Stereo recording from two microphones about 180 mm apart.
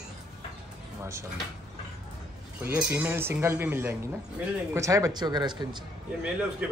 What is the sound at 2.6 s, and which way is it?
Speech, 10° right (ahead or behind).